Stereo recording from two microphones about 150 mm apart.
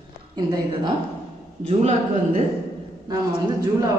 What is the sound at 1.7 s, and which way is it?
Speech, 50° right (ahead or behind).